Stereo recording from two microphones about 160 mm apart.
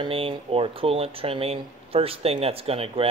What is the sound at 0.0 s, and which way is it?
Speech, 35° right (ahead or behind).